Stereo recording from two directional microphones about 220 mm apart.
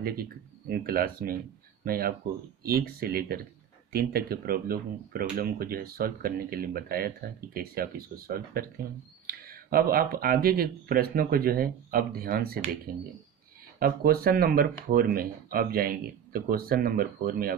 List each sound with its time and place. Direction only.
0.0 s speech: 45° right (ahead or behind)
13.7 s speech: 45° right (ahead or behind)